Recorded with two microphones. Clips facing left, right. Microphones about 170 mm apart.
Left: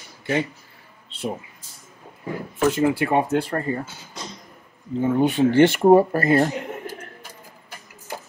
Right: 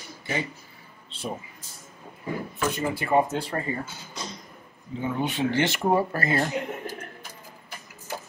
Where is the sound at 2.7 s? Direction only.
90° left; by 3.5 s 60° left (ahead or behind).